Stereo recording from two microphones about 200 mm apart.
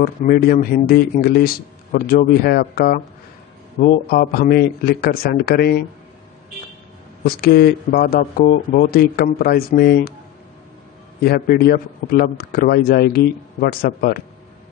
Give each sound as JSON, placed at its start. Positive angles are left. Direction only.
{"t": 0.0, "sound": "a man's voice", "side_deg": 45}
{"t": 7.2, "sound": "a man's voice", "side_deg": 50}
{"t": 11.2, "sound": "a man's voice", "side_deg": 50}